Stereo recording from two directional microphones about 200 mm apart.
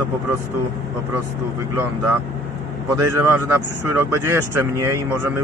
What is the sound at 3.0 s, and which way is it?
Speech, 15° right (ahead or behind).